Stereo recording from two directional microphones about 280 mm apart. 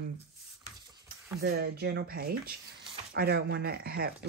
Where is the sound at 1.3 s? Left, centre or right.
Right.